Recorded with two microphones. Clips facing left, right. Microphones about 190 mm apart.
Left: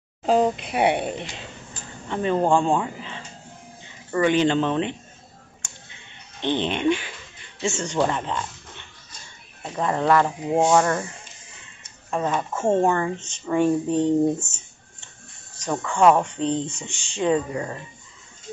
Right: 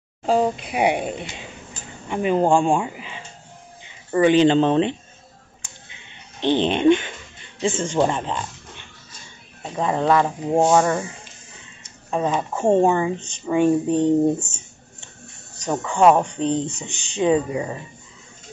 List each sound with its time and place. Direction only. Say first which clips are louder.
0.2 s speech: even; centre (ahead or behind); by 4.9 s 30° right (ahead or behind)
6.4 s speech: right 5 dB; 20° right (ahead or behind)
7.9 s speech: even; 20° right (ahead or behind)
9.6 s speech: right 2 dB; 10° right (ahead or behind)
12.1 s speech: right 2 dB; 15° right (ahead or behind)
15.6 s speech: right 2 dB; 20° right (ahead or behind)